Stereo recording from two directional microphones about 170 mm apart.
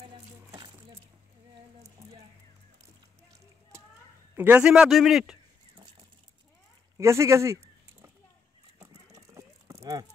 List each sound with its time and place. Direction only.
0.0 s a sound: 25° right (ahead or behind)
4.4 s a man's voice: 10° right (ahead or behind)
7.0 s speech: 15° right (ahead or behind)
8.7 s horse: 20° right (ahead or behind)